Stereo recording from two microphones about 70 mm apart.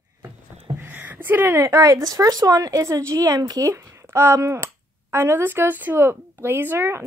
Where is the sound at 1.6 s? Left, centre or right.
Right.